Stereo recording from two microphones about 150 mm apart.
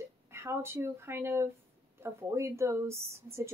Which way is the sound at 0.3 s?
15° right (ahead or behind).